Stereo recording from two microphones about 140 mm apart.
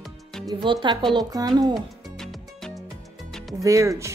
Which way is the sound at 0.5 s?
35° right (ahead or behind).